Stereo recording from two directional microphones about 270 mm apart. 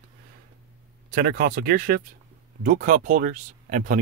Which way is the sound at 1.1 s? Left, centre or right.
Right.